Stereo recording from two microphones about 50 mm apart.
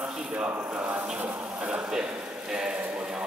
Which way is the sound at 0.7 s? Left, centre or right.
Right.